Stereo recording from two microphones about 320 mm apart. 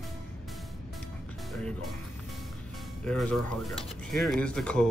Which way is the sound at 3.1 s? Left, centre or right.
Centre.